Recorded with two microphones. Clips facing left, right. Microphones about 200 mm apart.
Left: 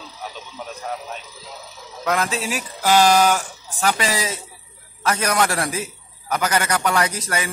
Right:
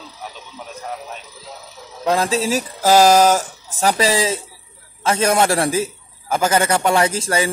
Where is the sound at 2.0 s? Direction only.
30° right (ahead or behind).